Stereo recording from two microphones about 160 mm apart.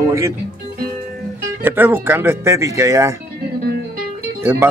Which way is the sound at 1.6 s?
15° right (ahead or behind).